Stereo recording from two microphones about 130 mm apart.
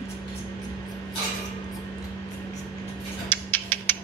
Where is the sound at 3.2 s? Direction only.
15° left (ahead or behind).